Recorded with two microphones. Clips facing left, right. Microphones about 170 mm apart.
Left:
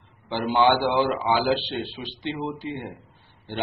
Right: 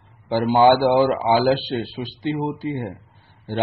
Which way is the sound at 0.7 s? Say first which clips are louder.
Right 8 dB; 40° right (ahead or behind).